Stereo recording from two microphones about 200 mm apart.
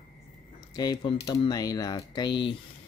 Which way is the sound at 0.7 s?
20° left (ahead or behind).